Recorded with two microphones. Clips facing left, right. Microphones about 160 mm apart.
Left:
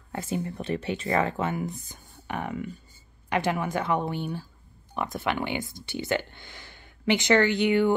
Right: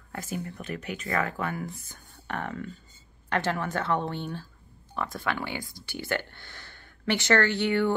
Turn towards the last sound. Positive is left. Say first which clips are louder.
# left 3 dB
turn(degrees=15)  # may be behind; listen again after turning